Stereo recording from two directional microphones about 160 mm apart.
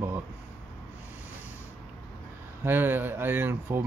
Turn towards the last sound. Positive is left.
turn(degrees=-15)  # may be behind; listen again after turning